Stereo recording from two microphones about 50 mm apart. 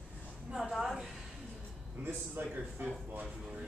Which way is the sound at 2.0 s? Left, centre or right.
Right.